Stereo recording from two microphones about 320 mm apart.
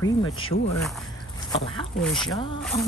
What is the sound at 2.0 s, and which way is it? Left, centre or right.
Speech, centre.